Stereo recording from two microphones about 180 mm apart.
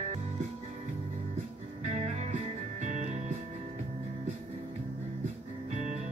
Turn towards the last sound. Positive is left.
turn(degrees=-40)  # may be behind; listen again after turning